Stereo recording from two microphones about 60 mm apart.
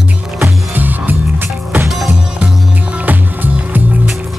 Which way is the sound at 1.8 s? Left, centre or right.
Centre.